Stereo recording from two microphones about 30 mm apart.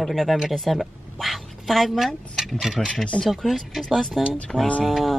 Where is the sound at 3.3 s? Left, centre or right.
Centre.